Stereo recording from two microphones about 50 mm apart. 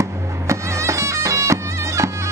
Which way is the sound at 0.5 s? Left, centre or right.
Right.